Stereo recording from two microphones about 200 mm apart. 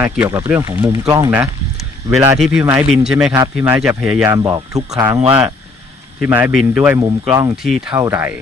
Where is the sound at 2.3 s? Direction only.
Centre (ahead or behind).